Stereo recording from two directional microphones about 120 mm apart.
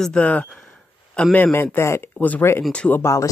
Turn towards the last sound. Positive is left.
turn(degrees=25)  # may be behind; listen again after turning